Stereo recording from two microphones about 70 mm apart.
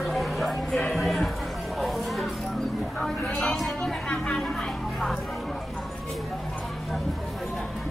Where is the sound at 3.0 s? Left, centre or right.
Centre.